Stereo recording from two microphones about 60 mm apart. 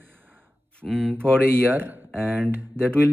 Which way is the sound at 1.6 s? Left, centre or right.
Right.